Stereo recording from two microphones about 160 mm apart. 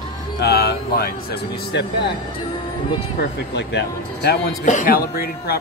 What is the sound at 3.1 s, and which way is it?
Speech, 90° left.